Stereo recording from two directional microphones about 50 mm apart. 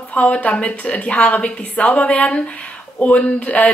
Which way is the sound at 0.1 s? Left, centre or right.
Left.